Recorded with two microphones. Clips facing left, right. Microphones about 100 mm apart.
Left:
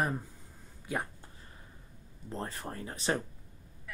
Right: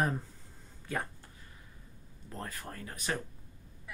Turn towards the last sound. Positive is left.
turn(degrees=30)  # may be behind; listen again after turning